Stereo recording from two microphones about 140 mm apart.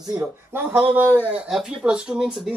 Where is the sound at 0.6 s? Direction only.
10° right (ahead or behind).